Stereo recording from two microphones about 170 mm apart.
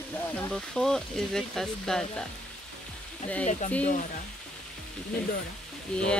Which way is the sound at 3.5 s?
40° left (ahead or behind).